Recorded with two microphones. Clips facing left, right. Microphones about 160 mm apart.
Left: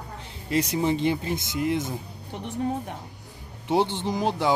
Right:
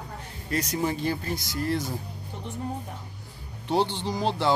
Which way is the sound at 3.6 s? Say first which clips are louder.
Left 2 dB; 20° left (ahead or behind).